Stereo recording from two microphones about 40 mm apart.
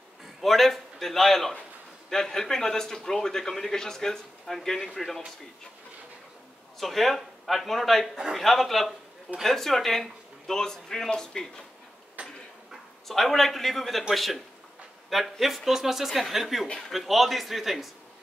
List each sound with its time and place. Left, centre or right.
0.2 s music: centre
2.0 s a man's voice: centre
6.8 s a woman's voice: centre
12.2 s tick-tock: right
13.1 s a woman's voice: centre